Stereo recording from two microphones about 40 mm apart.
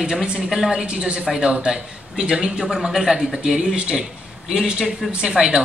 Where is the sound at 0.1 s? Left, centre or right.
Centre.